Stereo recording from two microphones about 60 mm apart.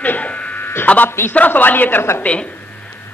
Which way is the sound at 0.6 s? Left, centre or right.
Left.